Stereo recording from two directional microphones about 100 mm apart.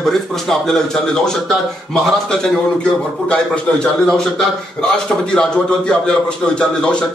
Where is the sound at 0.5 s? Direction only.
5° left (ahead or behind).